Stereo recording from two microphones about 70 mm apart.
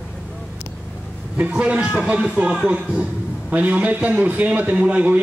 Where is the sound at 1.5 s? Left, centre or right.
Centre.